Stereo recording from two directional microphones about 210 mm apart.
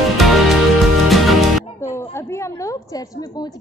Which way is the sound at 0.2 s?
Centre (ahead or behind).